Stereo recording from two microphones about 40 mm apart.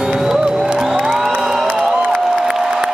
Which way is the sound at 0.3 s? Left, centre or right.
Centre.